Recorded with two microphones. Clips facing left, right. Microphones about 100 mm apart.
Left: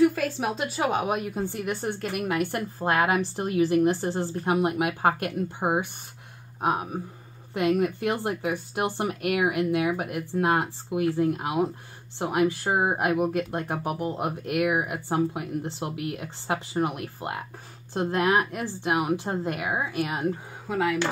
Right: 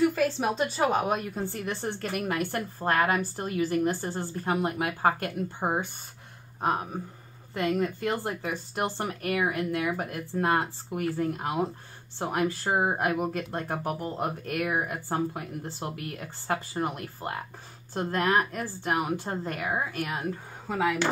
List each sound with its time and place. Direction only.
0.0 s speech: centre (ahead or behind); by 20.2 s 20° left (ahead or behind)
20.6 s speech: centre (ahead or behind)